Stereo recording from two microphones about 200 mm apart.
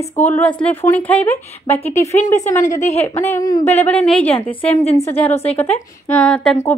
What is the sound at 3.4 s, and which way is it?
Speech, 20° left (ahead or behind).